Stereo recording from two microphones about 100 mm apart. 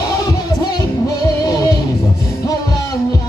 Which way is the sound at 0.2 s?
40° left (ahead or behind).